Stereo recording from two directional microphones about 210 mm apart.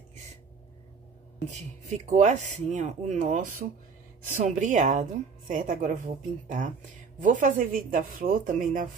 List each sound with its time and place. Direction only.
1.5 s speech: 35° right (ahead or behind)